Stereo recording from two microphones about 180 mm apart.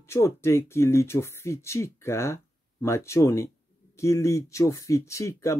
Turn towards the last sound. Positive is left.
turn(degrees=15)  # may be behind; listen again after turning